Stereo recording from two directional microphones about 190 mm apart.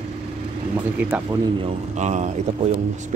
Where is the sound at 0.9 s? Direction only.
10° right (ahead or behind).